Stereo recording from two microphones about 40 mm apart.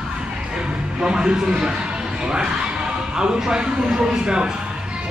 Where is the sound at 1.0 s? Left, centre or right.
Centre.